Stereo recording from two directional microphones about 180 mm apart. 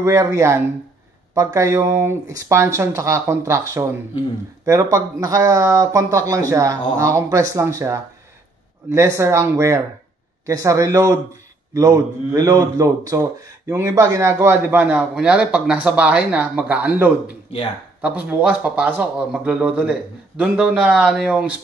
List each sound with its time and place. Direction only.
0.0 s a man's voice: 15° right (ahead or behind)
4.9 s a man's voice: 20° right (ahead or behind)